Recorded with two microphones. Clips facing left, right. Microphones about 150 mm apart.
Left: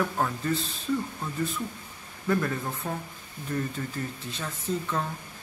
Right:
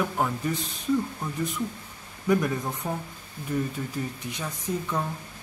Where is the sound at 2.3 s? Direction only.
15° right (ahead or behind).